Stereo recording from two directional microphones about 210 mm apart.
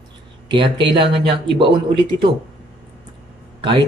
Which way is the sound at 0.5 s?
25° right (ahead or behind).